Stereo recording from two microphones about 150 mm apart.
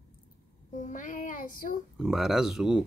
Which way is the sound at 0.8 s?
60° left (ahead or behind).